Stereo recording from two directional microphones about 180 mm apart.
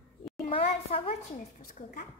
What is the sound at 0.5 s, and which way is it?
Speech, 35° left (ahead or behind).